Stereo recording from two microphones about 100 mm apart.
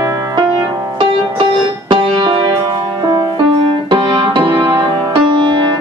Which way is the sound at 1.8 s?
55° right (ahead or behind).